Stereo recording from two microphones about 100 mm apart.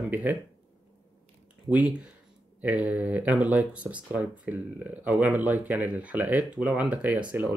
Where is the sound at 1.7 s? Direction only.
10° right (ahead or behind).